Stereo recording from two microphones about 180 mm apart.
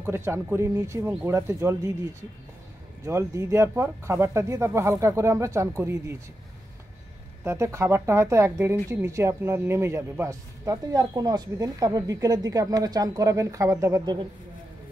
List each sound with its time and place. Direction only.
0.0 s speech: 15° right (ahead or behind)
3.1 s speech: 15° right (ahead or behind)
7.4 s speech: 15° right (ahead or behind)